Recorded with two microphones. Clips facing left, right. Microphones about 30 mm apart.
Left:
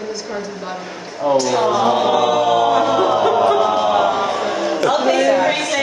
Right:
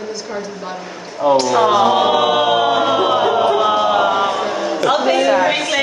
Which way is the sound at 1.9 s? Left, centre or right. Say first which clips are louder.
Right 1 dB; right.